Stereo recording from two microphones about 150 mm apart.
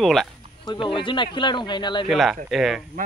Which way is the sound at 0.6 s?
30° left (ahead or behind).